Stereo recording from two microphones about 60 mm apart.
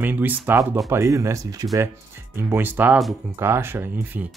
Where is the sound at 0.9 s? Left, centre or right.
Right.